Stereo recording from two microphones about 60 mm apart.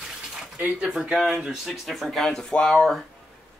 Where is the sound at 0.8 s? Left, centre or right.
Centre.